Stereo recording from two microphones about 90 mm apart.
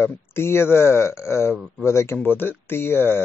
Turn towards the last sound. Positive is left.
turn(degrees=25)  # may be behind; listen again after turning